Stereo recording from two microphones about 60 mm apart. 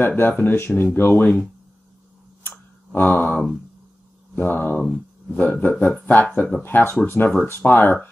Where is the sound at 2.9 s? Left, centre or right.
Left.